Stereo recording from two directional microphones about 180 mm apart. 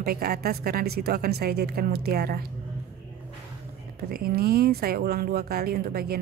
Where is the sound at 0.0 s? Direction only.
55° right (ahead or behind).